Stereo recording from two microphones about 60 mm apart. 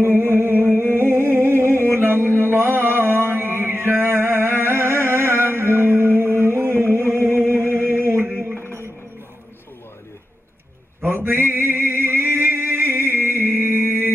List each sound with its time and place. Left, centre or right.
0.0 s music: right
2.0 s mantra: right
2.4 s music: right
7.8 s a sound: right
8.5 s music: left
11.0 s a sound: right